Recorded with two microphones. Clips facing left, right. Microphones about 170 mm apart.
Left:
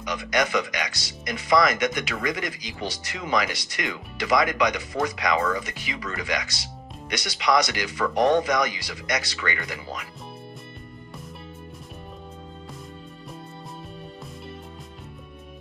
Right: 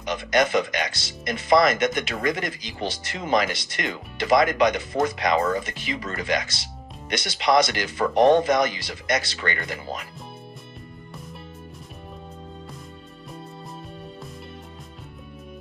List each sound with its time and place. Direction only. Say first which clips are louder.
0.0 s speech: right 3 dB; 25° right (ahead or behind)